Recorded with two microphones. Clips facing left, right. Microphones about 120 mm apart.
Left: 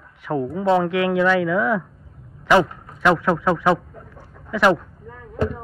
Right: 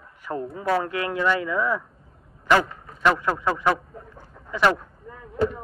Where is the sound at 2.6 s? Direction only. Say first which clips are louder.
Left 6 dB; centre (ahead or behind).